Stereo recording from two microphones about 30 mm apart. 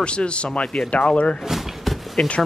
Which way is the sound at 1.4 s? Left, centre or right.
Centre.